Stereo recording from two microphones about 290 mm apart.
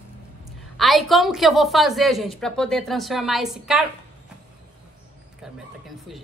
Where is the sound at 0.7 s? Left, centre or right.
Centre.